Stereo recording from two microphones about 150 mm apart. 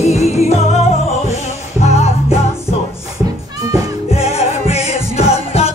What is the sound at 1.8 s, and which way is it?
Music, 45° left (ahead or behind).